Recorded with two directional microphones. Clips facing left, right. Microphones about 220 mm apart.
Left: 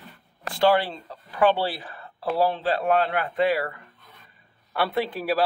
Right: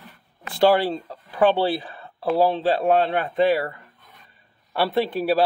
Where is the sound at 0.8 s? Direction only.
30° right (ahead or behind).